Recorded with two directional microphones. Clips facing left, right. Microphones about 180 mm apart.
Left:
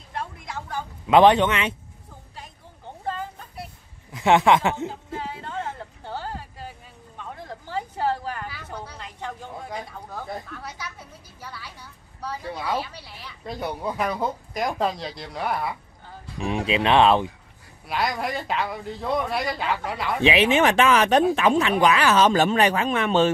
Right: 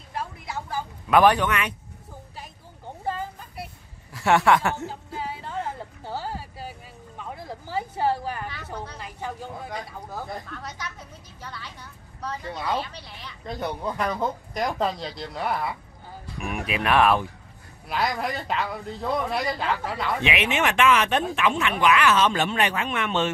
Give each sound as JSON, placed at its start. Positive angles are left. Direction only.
{"t": 0.1, "sound": "vehicle", "side_deg": -5}
{"t": 1.0, "sound": "speech", "side_deg": 20}
{"t": 4.1, "sound": "a man's voice", "side_deg": 20}
{"t": 4.8, "sound": "a sound", "side_deg": -5}
{"t": 8.9, "sound": "speech", "side_deg": -5}
{"t": 10.3, "sound": "speech", "side_deg": 10}
{"t": 16.3, "sound": "speech", "side_deg": 25}
{"t": 17.8, "sound": "speech", "side_deg": 0}
{"t": 20.2, "sound": "speech", "side_deg": 30}